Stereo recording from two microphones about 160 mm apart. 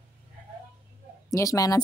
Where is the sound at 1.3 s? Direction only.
20° left (ahead or behind).